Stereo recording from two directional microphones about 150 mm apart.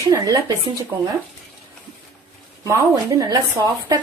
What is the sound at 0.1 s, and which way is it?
Speech, 25° right (ahead or behind).